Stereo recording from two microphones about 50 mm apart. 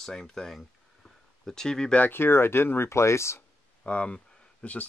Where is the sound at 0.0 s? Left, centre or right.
Centre.